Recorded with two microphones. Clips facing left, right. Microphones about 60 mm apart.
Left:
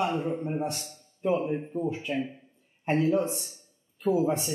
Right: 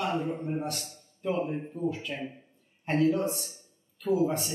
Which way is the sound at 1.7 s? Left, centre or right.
Centre.